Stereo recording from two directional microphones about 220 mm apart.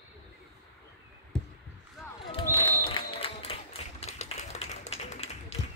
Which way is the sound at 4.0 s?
30° left (ahead or behind).